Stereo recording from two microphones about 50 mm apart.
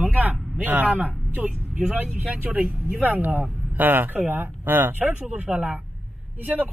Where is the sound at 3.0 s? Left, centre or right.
Right.